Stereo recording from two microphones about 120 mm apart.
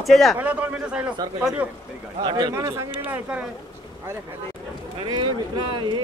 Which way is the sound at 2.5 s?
25° right (ahead or behind).